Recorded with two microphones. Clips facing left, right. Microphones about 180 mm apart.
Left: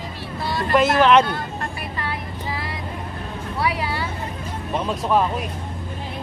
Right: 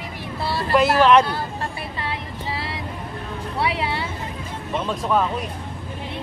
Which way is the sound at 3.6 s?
25° right (ahead or behind).